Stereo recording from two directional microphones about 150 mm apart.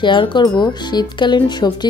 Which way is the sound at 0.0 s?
30° left (ahead or behind).